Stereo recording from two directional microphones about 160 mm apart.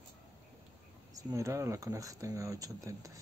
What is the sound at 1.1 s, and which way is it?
Speech, 20° right (ahead or behind).